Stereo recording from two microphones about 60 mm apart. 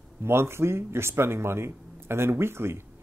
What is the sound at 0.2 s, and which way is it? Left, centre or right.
A man's voice, right.